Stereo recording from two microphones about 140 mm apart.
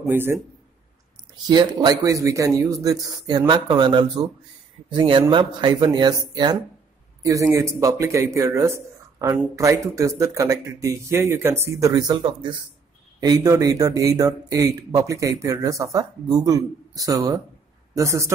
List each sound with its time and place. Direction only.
0.1 s a man's voice: 15° right (ahead or behind)
1.3 s speech: 30° right (ahead or behind)